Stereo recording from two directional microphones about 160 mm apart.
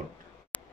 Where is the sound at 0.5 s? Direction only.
10° left (ahead or behind).